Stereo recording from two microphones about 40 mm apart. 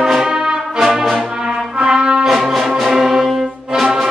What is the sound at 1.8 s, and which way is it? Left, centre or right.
Brass instrument, centre.